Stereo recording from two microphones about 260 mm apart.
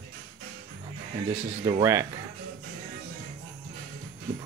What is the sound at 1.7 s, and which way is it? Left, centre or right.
Speech, centre.